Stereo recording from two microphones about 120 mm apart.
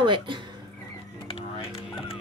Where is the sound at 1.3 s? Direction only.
50° left (ahead or behind).